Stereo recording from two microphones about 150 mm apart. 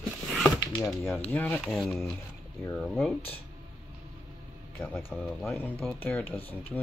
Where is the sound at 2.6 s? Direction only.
5° left (ahead or behind).